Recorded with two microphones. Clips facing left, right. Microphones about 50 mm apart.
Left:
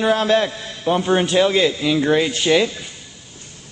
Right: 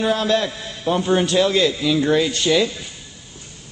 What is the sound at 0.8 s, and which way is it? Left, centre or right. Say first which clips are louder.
A man's voice: left 1 dB; left.